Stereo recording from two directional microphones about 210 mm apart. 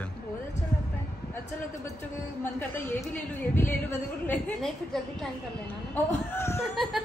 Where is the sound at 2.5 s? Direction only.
10° left (ahead or behind).